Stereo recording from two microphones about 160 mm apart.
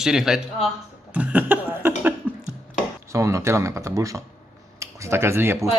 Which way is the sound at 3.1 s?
20° right (ahead or behind).